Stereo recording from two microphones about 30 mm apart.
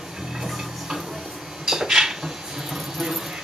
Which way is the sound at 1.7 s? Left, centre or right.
Centre.